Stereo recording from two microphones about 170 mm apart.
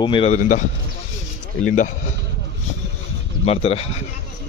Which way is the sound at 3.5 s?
35° left (ahead or behind).